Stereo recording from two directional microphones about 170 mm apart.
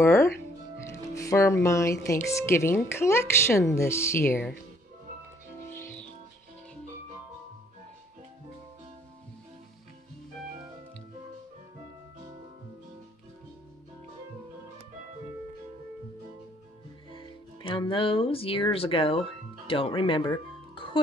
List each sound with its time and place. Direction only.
0.0 s music: 15° left (ahead or behind)
0.8 s speech: 20° left (ahead or behind)
5.7 s music: 15° left (ahead or behind)
17.1 s speech: 30° left (ahead or behind)
20.7 s music: 30° left (ahead or behind)